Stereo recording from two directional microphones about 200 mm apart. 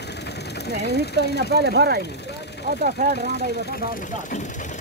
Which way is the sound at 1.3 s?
60° right (ahead or behind).